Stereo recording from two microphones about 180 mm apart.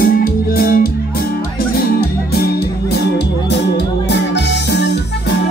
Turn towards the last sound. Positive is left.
turn(degrees=70)  # may be behind; listen again after turning